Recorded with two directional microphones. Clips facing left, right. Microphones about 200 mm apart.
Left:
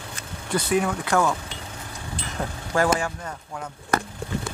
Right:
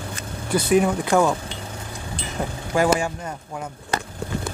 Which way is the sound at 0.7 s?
20° right (ahead or behind).